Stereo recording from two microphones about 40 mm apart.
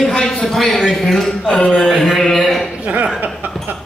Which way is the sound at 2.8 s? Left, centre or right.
Right.